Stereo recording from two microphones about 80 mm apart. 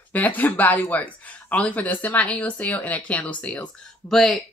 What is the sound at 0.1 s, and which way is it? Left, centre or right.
Speech, left.